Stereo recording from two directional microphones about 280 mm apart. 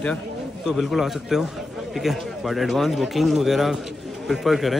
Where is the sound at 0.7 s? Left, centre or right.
Centre.